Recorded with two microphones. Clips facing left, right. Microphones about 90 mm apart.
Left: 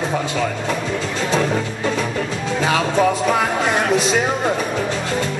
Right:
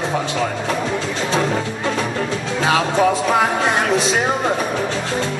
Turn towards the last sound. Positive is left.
turn(degrees=-10)  # may be behind; listen again after turning